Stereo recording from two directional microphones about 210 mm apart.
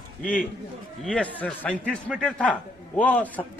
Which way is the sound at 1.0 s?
5° left (ahead or behind).